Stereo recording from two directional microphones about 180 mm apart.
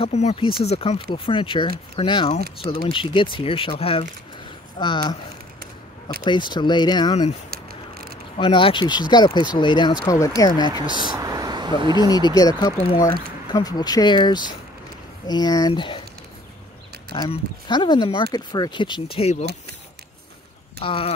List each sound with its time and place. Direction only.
0.0 s speech: 35° left (ahead or behind)
6.2 s speech: 25° left (ahead or behind)
7.5 s a sound: 55° right (ahead or behind)
8.4 s speech: 30° left (ahead or behind)
10.9 s speech: 25° right (ahead or behind)
12.1 s speech: 20° left (ahead or behind)
17.1 s speech: 30° left (ahead or behind)
20.8 s speech: 30° left (ahead or behind)